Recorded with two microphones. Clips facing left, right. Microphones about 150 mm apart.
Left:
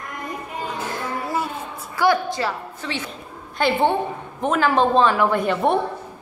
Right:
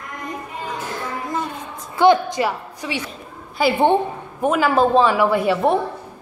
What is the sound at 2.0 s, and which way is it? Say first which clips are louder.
A woman's voice: right 5 dB; 20° right (ahead or behind).